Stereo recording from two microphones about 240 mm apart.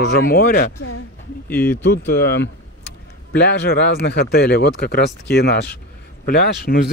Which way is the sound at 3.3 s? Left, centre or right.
Left.